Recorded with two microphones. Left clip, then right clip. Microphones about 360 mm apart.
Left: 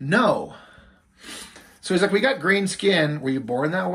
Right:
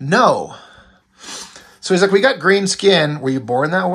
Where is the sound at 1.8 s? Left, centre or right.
Centre.